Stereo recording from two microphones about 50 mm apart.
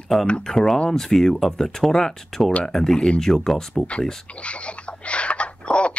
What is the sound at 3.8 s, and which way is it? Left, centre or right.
Speech, left.